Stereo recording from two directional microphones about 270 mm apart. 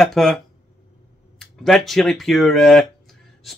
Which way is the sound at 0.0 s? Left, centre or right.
Centre.